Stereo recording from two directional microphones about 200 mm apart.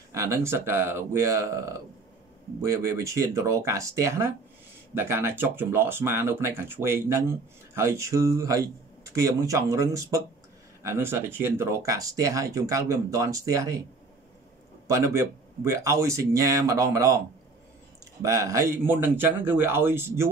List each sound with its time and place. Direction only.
0.1 s speech: 15° right (ahead or behind)
14.9 s speech: 15° right (ahead or behind)
18.2 s speech: 15° right (ahead or behind)